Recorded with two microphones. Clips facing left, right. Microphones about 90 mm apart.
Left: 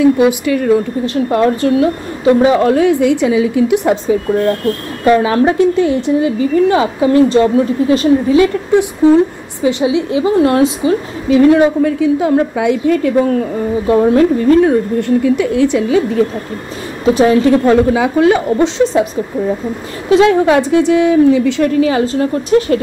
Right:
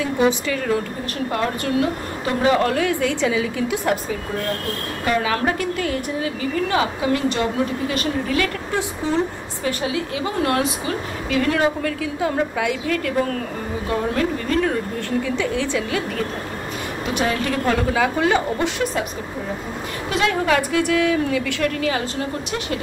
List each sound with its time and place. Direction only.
0.0 s a woman's voice: 10° left (ahead or behind)
1.0 s a woman's voice: 25° left (ahead or behind)
5.0 s a woman's voice: 30° left (ahead or behind)
17.0 s a woman's voice: 30° left (ahead or behind)
20.1 s a woman's voice: 25° left (ahead or behind)